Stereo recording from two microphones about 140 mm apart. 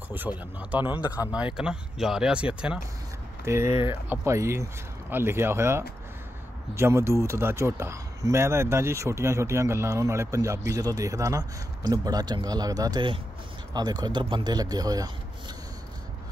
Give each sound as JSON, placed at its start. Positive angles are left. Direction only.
{"t": 0.2, "sound": "speech", "side_deg": -15}
{"t": 3.4, "sound": "speech", "side_deg": -20}